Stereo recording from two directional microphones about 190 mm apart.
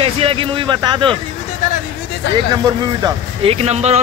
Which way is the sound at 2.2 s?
70° left (ahead or behind).